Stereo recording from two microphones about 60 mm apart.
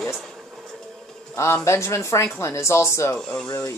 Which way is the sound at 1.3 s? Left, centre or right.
Left.